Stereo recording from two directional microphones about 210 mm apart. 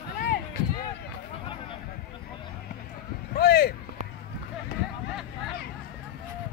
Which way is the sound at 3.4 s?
50° left (ahead or behind).